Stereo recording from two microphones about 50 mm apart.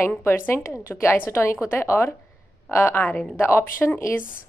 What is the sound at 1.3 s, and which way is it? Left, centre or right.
Speech, left.